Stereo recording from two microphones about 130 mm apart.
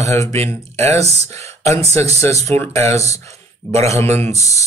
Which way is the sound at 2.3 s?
55° right (ahead or behind).